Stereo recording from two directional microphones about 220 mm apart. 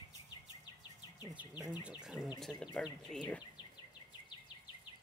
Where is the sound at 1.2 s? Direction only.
10° right (ahead or behind).